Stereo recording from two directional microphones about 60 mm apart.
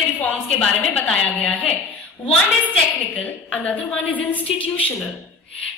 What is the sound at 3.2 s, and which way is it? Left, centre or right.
A woman's voice, left.